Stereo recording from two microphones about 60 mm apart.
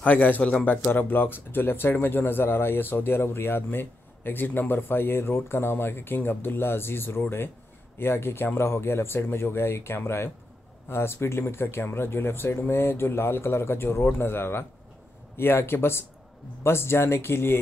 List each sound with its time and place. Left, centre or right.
0.0 s speech: left